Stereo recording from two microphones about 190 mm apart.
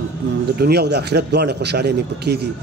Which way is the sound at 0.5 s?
60° right (ahead or behind).